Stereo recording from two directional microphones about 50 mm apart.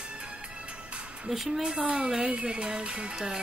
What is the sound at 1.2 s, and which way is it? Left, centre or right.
Speech, centre.